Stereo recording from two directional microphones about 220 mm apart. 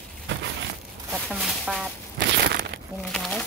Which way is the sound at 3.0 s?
5° left (ahead or behind).